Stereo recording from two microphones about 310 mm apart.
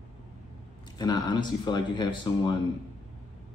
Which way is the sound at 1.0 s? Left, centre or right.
Centre.